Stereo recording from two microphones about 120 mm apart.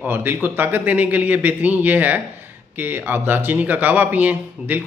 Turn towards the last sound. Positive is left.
turn(degrees=-15)  # may be behind; listen again after turning